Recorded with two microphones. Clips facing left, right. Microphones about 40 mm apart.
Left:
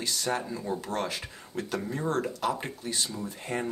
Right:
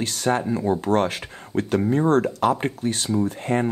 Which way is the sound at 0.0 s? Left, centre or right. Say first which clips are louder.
Right 8 dB; right.